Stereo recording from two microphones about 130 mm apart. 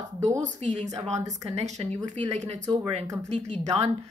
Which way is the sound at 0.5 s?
60° right (ahead or behind).